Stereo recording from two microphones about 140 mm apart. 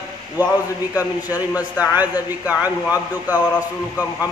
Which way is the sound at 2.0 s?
10° right (ahead or behind).